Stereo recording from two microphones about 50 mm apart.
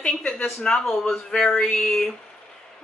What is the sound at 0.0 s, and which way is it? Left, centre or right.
Speech, left.